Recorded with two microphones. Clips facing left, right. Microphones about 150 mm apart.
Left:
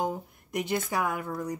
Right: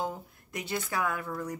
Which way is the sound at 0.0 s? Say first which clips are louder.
Left 4 dB; 15° left (ahead or behind).